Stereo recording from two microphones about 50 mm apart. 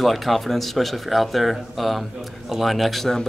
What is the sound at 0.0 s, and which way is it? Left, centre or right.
Speech, centre.